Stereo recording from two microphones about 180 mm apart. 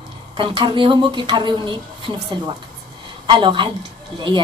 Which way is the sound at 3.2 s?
25° right (ahead or behind).